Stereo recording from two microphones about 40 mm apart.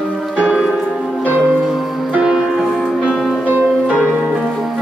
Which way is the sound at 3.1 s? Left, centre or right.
Centre.